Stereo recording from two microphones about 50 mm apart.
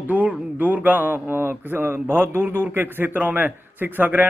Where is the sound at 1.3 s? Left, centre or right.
Right.